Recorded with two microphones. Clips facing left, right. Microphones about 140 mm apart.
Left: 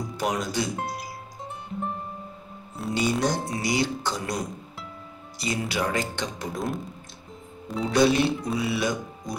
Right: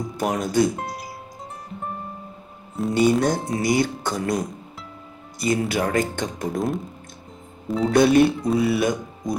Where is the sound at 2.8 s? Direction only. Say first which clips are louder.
Right 7 dB; 5° left (ahead or behind).